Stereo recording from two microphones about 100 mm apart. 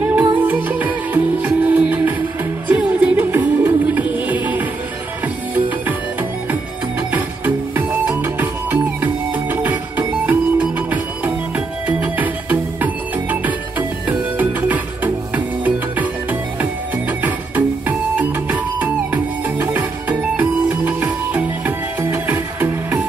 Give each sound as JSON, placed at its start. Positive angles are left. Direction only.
{"t": 0.0, "sound": "music", "side_deg": -15}
{"t": 7.1, "sound": "music", "side_deg": -15}